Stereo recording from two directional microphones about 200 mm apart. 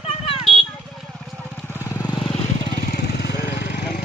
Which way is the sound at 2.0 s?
25° left (ahead or behind).